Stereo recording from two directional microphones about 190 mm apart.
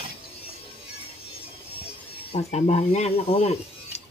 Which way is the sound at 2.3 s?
35° left (ahead or behind).